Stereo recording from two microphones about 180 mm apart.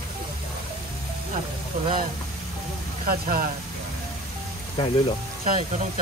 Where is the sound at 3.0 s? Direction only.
55° right (ahead or behind).